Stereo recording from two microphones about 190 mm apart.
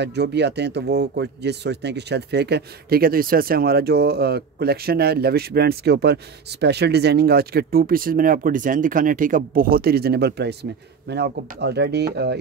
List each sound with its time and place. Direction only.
0.0 s speech: 65° right (ahead or behind)